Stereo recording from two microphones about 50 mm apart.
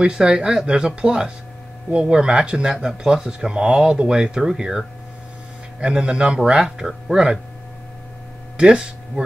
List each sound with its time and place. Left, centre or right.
0.0 s speech: centre
8.5 s speech: centre